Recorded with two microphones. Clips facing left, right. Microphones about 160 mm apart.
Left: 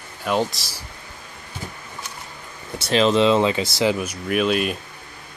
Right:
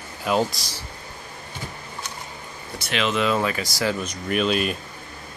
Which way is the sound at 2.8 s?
35° left (ahead or behind).